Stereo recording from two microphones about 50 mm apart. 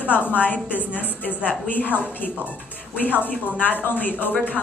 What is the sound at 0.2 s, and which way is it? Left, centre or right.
Speech, right.